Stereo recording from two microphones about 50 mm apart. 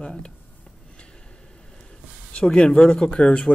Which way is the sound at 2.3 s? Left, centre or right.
Centre.